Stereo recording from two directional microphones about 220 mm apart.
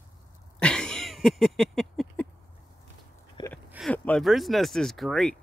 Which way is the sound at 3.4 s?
20° left (ahead or behind).